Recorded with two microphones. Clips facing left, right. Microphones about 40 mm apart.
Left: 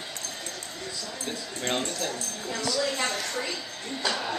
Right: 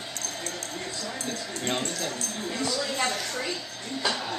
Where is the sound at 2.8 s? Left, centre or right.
Centre.